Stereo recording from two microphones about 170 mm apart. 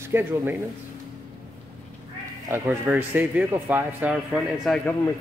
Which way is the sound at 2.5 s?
15° right (ahead or behind).